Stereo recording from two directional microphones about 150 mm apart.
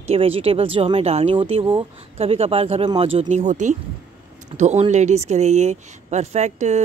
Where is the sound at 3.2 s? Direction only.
55° right (ahead or behind).